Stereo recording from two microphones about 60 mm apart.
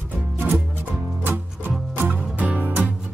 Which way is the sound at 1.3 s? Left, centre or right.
Right.